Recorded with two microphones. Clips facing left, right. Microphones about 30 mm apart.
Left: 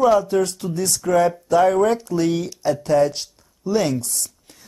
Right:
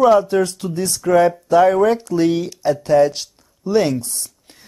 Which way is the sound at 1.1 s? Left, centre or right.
Right.